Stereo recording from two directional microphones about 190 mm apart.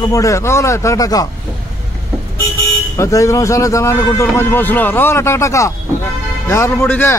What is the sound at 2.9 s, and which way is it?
Speech, 15° left (ahead or behind).